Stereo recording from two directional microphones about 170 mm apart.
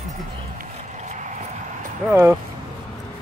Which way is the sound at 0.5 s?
45° right (ahead or behind).